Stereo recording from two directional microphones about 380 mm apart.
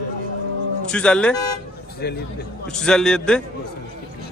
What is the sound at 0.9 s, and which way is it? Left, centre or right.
Speech, centre.